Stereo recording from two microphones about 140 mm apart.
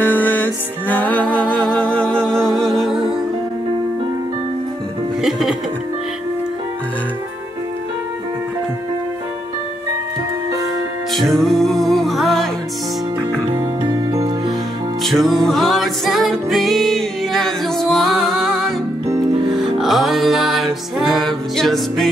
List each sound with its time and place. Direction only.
0.0 s music: 10° left (ahead or behind)
5.2 s music: 5° right (ahead or behind)
11.1 s music: centre (ahead or behind)
13.6 s music: 35° right (ahead or behind)
15.0 s music: centre (ahead or behind)